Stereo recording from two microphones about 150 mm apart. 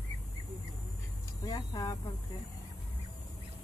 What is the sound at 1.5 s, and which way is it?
Speech, 25° left (ahead or behind).